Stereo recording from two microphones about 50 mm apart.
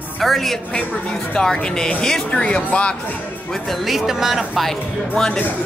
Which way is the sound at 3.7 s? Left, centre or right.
Centre.